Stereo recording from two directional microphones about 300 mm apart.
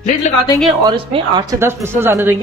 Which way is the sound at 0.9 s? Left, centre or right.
Centre.